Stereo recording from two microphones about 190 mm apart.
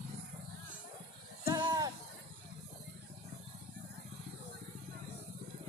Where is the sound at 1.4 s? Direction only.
15° right (ahead or behind).